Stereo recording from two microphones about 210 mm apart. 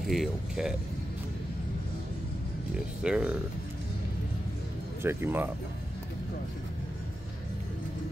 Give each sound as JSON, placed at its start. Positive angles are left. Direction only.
{"t": 0.0, "sound": "speech", "side_deg": 0}
{"t": 3.0, "sound": "speech", "side_deg": -5}
{"t": 5.0, "sound": "speech", "side_deg": -10}